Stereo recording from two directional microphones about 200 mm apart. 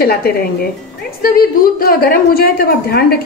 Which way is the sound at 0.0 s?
50° left (ahead or behind).